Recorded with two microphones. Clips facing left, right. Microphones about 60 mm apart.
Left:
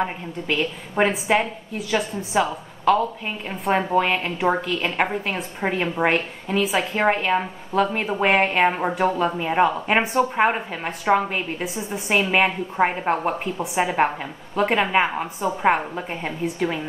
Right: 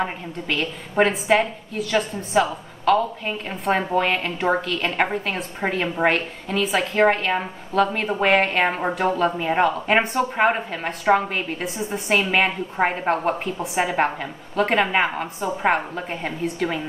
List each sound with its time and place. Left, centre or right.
0.5 s a woman's voice: centre